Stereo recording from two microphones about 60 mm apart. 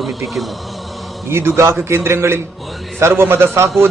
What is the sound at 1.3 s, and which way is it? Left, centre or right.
A man's voice, right.